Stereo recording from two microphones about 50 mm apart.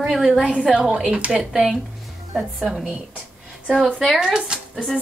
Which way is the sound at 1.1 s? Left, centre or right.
Right.